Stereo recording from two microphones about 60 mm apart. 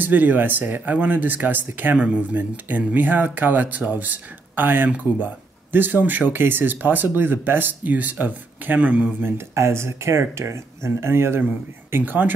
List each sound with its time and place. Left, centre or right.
0.0 s speech: right
9.2 s speech: right
12.0 s speech: right